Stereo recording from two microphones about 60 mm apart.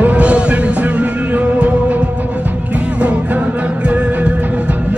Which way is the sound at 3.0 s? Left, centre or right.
Right.